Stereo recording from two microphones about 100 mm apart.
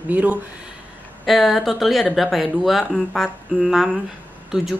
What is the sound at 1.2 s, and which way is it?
Speech, centre (ahead or behind).